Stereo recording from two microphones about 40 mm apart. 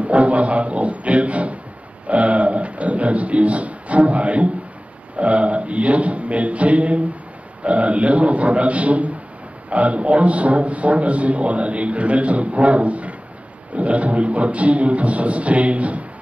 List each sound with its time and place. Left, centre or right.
0.0 s speech: right
2.0 s a sound: right
7.6 s a man's voice: right